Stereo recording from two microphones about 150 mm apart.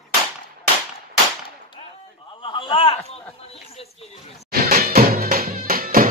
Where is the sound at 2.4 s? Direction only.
35° left (ahead or behind).